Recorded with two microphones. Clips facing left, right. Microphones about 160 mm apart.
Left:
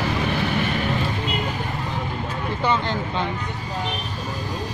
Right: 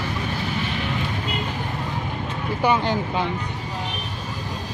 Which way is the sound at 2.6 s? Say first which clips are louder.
Right 3 dB; 15° right (ahead or behind).